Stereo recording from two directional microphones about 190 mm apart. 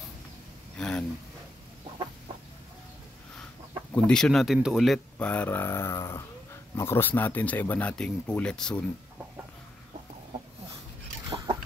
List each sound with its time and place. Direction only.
0.7 s a sound: 5° left (ahead or behind)
3.9 s speech: 5° left (ahead or behind)
11.2 s chicken: 25° right (ahead or behind)